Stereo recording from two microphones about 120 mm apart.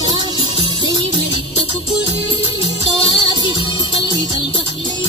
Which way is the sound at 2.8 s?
40° right (ahead or behind).